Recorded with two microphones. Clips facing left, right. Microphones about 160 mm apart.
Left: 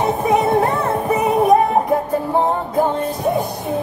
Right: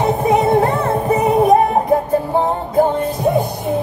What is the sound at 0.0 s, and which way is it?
Music, 30° right (ahead or behind).